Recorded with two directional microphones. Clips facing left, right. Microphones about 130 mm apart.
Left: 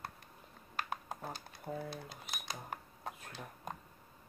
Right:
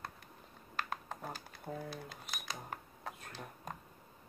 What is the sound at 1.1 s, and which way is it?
Typing, 10° left (ahead or behind).